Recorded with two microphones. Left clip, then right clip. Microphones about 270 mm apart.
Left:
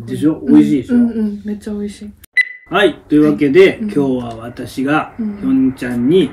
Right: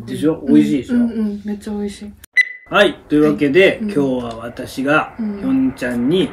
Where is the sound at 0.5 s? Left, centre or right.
Centre.